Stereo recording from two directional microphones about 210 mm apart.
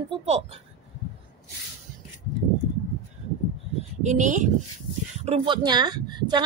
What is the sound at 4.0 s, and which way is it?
Speech, 35° right (ahead or behind).